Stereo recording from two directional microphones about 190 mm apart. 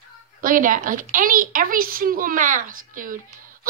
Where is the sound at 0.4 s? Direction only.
45° right (ahead or behind).